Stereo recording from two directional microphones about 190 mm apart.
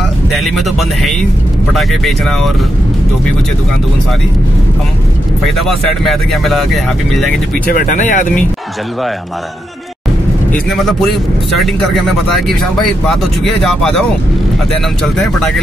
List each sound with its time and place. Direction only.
0.3 s a man's voice: centre (ahead or behind)
5.6 s a man's voice: centre (ahead or behind)
7.7 s speech: 40° left (ahead or behind)
10.5 s a man's voice: 5° left (ahead or behind)